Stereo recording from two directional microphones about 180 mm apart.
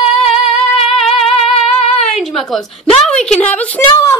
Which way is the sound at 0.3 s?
Centre (ahead or behind).